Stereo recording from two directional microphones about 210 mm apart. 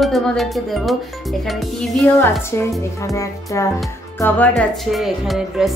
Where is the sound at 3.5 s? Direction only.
15° left (ahead or behind); by 5.7 s centre (ahead or behind).